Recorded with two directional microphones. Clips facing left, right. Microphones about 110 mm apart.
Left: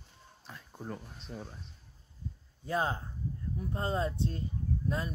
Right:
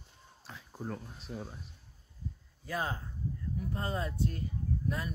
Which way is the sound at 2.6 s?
30° left (ahead or behind).